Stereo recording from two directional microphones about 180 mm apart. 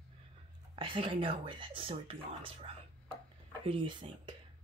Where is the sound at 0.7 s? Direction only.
30° right (ahead or behind).